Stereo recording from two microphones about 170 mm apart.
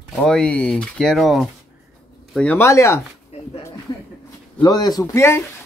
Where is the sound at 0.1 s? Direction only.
5° left (ahead or behind).